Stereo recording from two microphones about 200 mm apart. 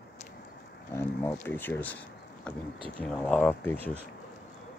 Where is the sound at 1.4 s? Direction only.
10° left (ahead or behind).